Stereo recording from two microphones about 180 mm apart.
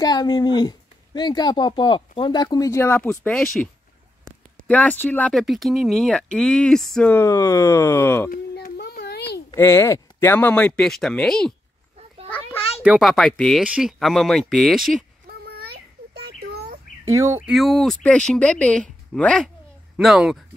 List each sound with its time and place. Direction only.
0.0 s speech: 20° left (ahead or behind); by 3.6 s 5° left (ahead or behind)
4.6 s speech: 10° left (ahead or behind)
8.3 s a sound: 60° left (ahead or behind)
9.6 s speech: 15° left (ahead or behind)
12.3 s a sound: 10° left (ahead or behind)
12.8 s speech: 5° right (ahead or behind)
15.2 s a sound: 60° right (ahead or behind)
17.0 s speech: 15° right (ahead or behind)
17.5 s speech: centre (ahead or behind)